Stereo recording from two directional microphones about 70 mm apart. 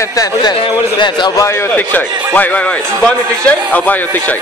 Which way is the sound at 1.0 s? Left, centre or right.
Left.